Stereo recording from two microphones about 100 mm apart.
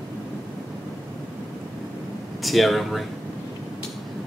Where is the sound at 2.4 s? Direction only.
Centre (ahead or behind).